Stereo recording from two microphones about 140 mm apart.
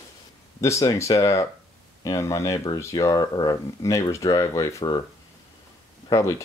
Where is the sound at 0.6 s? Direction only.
20° left (ahead or behind).